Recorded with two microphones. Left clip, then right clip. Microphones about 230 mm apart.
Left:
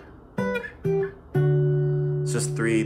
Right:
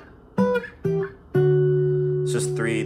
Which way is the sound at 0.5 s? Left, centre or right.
Centre.